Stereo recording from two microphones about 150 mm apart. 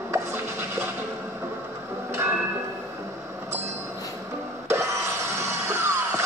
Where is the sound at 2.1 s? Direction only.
15° right (ahead or behind).